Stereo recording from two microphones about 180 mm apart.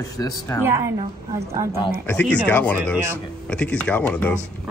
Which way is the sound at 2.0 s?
10° left (ahead or behind).